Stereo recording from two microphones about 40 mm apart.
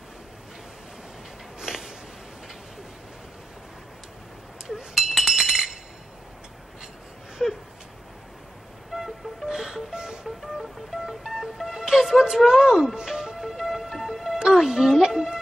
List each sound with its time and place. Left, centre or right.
1.6 s a sound: centre
4.6 s chink: centre
7.4 s a sound: centre
8.9 s music: centre
9.5 s music: centre
10.2 s vehicle: centre
11.1 s music: centre
12.4 s a sound: centre
12.9 s music: centre